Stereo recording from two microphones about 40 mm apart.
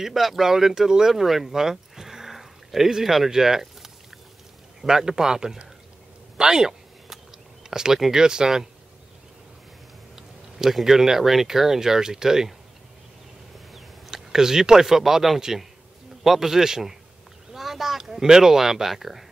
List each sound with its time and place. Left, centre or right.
0.0 s speech: centre
7.7 s speech: centre
10.1 s speech: centre
14.1 s speech: centre